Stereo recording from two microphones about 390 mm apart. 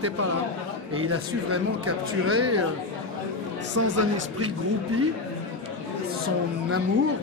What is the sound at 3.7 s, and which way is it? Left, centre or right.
Speech, right.